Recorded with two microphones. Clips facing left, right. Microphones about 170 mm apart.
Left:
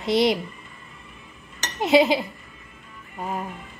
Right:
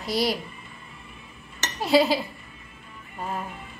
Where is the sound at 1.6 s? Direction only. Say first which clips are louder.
Left 2 dB; 20° left (ahead or behind).